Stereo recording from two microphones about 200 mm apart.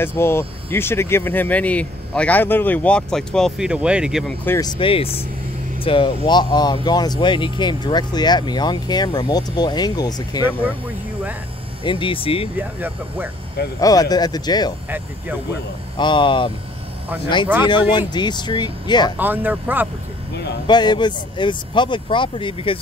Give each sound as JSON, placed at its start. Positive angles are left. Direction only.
{"t": 0.0, "sound": "speech", "side_deg": 10}
{"t": 4.5, "sound": "speech", "side_deg": 20}
{"t": 11.8, "sound": "speech", "side_deg": 25}
{"t": 12.5, "sound": "speech", "side_deg": -10}
{"t": 13.7, "sound": "speech", "side_deg": 20}
{"t": 16.0, "sound": "speech", "side_deg": 25}
{"t": 17.9, "sound": "speech", "side_deg": 20}
{"t": 19.1, "sound": "speech", "side_deg": -10}
{"t": 20.6, "sound": "speech", "side_deg": 20}